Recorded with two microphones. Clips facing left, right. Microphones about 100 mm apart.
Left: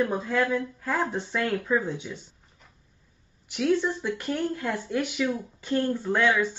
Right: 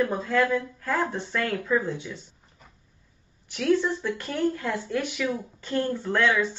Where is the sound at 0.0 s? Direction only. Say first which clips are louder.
Right 1 dB; 15° left (ahead or behind).